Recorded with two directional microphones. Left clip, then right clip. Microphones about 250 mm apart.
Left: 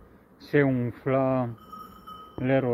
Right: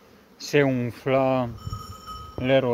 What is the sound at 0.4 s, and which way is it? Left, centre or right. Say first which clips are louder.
Speech: right 2 dB; right.